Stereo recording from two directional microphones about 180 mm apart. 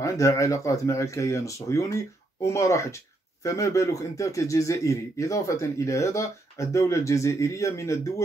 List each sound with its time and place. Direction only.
0.0 s a man's voice: 15° left (ahead or behind)